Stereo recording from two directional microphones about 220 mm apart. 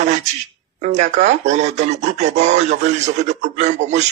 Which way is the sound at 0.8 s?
30° right (ahead or behind).